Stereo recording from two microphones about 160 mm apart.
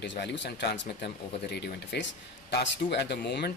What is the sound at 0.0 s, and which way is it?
Speech, 90° left.